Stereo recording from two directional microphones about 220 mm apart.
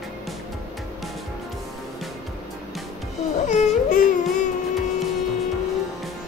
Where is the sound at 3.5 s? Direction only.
30° left (ahead or behind).